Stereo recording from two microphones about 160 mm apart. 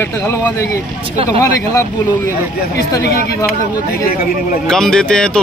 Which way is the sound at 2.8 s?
75° left (ahead or behind).